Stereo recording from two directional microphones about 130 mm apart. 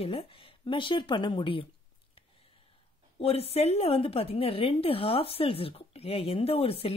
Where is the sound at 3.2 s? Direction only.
50° left (ahead or behind).